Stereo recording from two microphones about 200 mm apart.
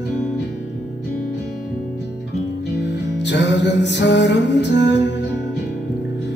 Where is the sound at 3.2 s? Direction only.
60° left (ahead or behind).